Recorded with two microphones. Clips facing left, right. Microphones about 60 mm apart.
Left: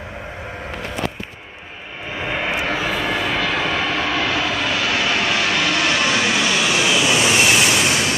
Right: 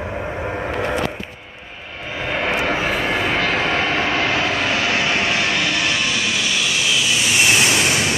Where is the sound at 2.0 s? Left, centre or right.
Centre.